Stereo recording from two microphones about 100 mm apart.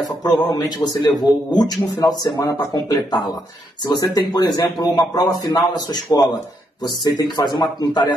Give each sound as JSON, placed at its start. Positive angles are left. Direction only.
{"t": 0.2, "sound": "speech", "side_deg": 45}